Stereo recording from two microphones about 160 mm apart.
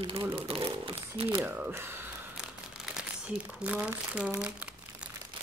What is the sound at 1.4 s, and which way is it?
A woman's voice, 15° right (ahead or behind).